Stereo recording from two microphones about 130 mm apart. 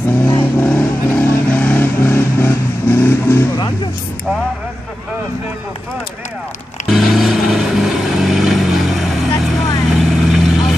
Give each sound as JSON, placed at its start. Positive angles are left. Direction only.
{"t": 0.6, "sound": "vehicle", "side_deg": 15}
{"t": 3.5, "sound": "speech", "side_deg": 30}
{"t": 6.9, "sound": "vehicle", "side_deg": 0}